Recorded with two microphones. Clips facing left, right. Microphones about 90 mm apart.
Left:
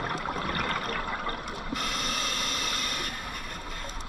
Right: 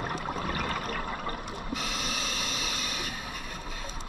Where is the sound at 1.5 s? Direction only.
55° left (ahead or behind).